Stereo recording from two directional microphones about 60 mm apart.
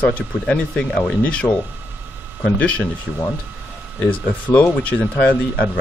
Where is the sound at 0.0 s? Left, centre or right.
Centre.